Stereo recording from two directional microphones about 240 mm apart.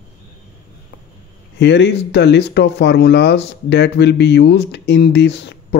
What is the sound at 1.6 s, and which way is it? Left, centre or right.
Speech, left.